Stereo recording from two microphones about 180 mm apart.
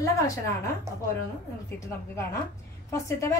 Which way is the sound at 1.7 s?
15° left (ahead or behind).